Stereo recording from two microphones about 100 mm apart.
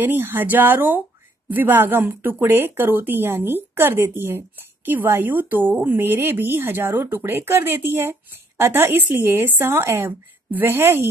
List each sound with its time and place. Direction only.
0.0 s speech: 20° right (ahead or behind)